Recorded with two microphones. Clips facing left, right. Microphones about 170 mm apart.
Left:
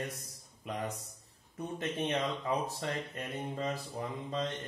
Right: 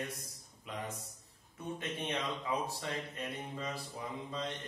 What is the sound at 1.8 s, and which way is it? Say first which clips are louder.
Mantra: left 6 dB; 45° left (ahead or behind).